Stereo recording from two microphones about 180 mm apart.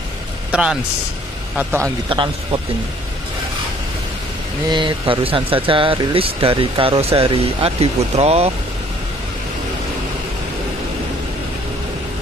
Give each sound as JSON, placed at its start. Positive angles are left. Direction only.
{"t": 0.5, "sound": "a man's voice", "side_deg": -5}
{"t": 2.0, "sound": "speech", "side_deg": -25}
{"t": 4.6, "sound": "speech", "side_deg": -25}